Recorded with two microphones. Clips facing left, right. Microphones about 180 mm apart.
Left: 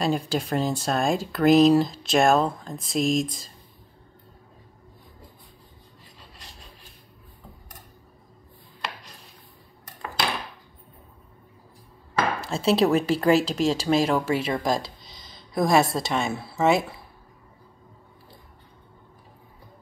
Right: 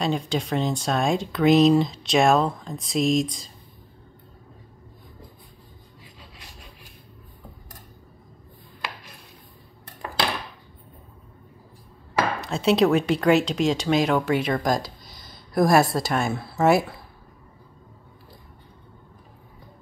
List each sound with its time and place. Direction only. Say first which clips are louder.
0.0 s speech: even; 5° left (ahead or behind)
12.4 s speech: right 2 dB; centre (ahead or behind)
14.8 s a sound: right 2 dB; 20° left (ahead or behind)
15.5 s speech: right 2 dB; centre (ahead or behind)